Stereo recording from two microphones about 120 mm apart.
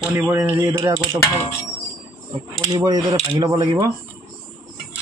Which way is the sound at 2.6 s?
30° right (ahead or behind).